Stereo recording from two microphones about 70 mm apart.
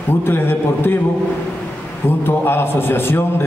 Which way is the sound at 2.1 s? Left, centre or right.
Left.